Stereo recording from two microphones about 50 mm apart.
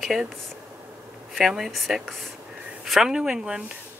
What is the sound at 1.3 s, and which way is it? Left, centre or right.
Speech, centre.